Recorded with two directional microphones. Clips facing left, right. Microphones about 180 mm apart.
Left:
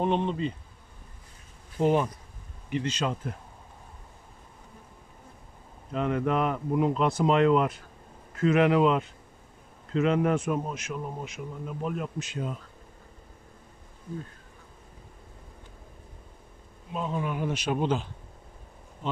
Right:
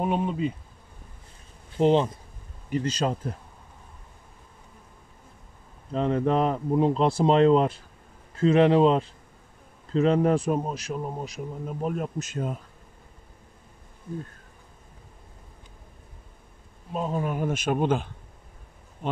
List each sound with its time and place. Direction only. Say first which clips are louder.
0.0 s bee: right 1 dB; 5° right (ahead or behind)
1.8 s speech: right 3 dB; 25° right (ahead or behind)
2.7 s speech: right 3 dB; 40° right (ahead or behind)
5.9 s speech: right 3 dB; 30° right (ahead or behind)
16.9 s speech: right 3 dB; 40° right (ahead or behind)